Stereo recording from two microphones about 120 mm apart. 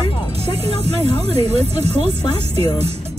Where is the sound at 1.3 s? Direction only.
60° right (ahead or behind).